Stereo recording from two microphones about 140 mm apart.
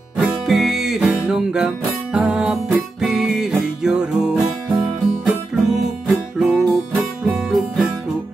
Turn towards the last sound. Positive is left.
turn(degrees=-5)  # may be behind; listen again after turning